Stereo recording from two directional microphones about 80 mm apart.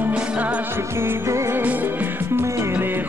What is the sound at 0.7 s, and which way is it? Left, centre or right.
Music, right.